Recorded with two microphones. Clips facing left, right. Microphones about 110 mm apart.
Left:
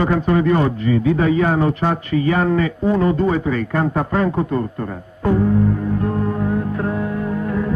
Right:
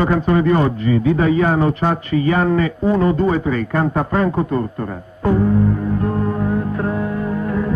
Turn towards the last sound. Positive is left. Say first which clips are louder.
# right 1 dB
turn(degrees=-35)  # may be behind; listen again after turning